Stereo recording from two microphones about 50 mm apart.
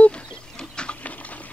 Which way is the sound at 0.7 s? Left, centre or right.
Left.